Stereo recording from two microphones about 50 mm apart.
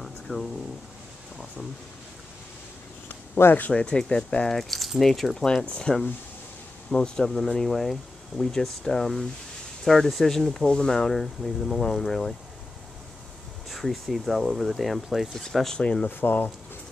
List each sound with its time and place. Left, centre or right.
0.0 s air conditioning: centre
3.3 s speech: left
3.7 s speech: centre
4.5 s speech: centre
5.4 s speech: centre
7.6 s speech: centre
13.7 s speech: centre
15.8 s speech: left
16.1 s speech: left